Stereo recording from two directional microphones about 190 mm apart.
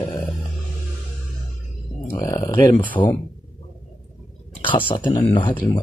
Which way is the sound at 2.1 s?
15° left (ahead or behind).